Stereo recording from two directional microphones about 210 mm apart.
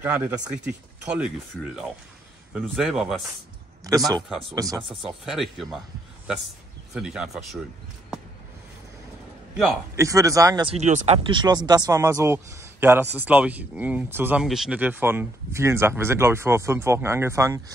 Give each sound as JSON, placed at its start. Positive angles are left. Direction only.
{"t": 0.0, "sound": "speech", "side_deg": -10}
{"t": 2.5, "sound": "speech", "side_deg": -5}
{"t": 3.8, "sound": "speech", "side_deg": -15}
{"t": 4.8, "sound": "speech", "side_deg": 0}
{"t": 6.9, "sound": "speech", "side_deg": -5}
{"t": 9.9, "sound": "speech", "side_deg": -15}
{"t": 11.2, "sound": "speech", "side_deg": -20}